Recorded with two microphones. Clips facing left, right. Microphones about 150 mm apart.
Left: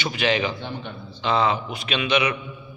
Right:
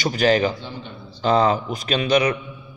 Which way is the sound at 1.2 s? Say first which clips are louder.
Right 4 dB; 40° right (ahead or behind).